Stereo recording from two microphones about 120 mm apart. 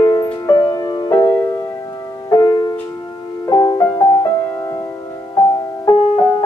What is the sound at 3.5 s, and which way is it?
Music, 30° left (ahead or behind).